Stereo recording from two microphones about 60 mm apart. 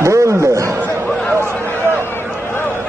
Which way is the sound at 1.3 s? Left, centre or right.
Right.